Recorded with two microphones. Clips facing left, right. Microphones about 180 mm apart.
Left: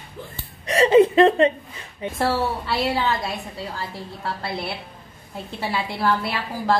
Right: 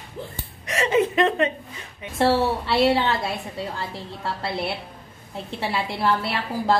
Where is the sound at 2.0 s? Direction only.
30° left (ahead or behind).